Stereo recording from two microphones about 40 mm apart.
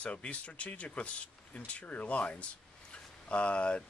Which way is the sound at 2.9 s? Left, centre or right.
Left.